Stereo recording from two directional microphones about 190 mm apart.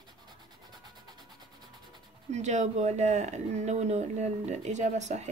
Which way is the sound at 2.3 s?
35° right (ahead or behind).